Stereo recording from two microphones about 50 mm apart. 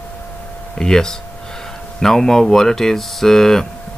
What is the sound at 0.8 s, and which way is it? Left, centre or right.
Speech, centre.